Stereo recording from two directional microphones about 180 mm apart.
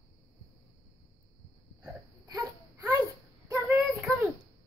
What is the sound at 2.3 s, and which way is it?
Baby cry, 20° right (ahead or behind).